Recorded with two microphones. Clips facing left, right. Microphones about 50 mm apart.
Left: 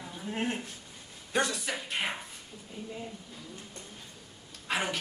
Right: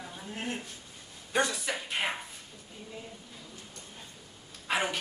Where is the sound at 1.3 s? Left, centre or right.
Centre.